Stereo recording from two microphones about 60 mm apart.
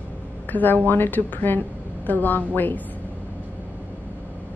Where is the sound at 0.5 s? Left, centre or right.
Left.